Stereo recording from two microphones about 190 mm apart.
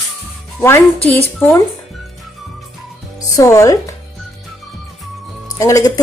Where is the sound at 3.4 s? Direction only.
15° left (ahead or behind).